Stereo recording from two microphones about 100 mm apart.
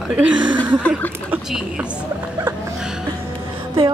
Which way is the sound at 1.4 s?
5° right (ahead or behind).